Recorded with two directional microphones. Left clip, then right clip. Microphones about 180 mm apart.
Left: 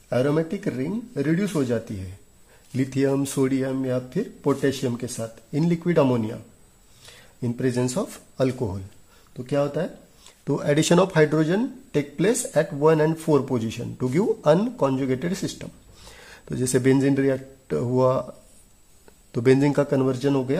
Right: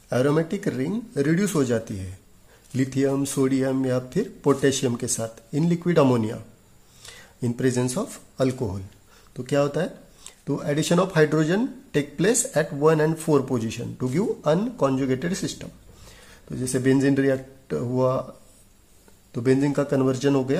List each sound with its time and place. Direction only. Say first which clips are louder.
0.1 s speech: even; 5° left (ahead or behind)
5.5 s speech: even; 15° left (ahead or behind)
10.4 s speech: left 4 dB; 30° left (ahead or behind)
14.9 s speech: even; 15° left (ahead or behind); by 16.8 s 35° left (ahead or behind)
16.8 s speech: right 1 dB; 20° left (ahead or behind)
19.3 s speech: left 3 dB; 30° left (ahead or behind); by 20.5 s 10° left (ahead or behind)